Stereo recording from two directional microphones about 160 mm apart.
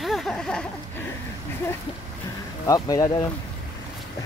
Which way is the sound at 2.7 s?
20° left (ahead or behind).